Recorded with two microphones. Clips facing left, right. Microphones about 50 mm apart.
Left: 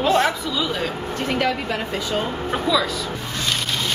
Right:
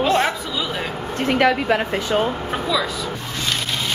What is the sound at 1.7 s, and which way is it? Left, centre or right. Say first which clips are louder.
Speech: right 4 dB; right.